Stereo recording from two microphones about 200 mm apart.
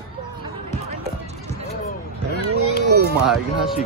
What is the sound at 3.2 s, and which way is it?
Speech, centre (ahead or behind).